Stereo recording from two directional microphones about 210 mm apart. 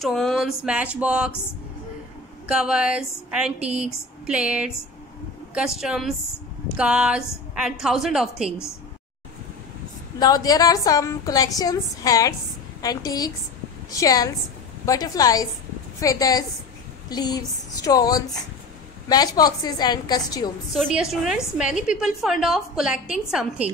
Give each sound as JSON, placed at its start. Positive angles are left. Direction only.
{"t": 0.0, "sound": "a woman's voice", "side_deg": 0}
{"t": 2.4, "sound": "a woman's voice", "side_deg": -5}
{"t": 10.1, "sound": "a woman's voice", "side_deg": 15}
{"t": 20.7, "sound": "a woman's voice", "side_deg": 0}